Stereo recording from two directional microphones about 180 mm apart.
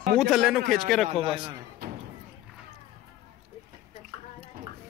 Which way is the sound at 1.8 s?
60° right (ahead or behind).